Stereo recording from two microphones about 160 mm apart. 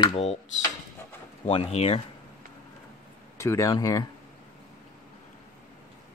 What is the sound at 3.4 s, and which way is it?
Speech, 20° left (ahead or behind).